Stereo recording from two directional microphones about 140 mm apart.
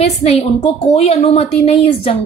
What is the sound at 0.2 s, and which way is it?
Speech, 50° left (ahead or behind).